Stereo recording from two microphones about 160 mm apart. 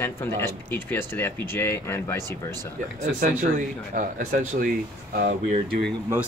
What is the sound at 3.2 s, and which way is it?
Speech, 55° right (ahead or behind).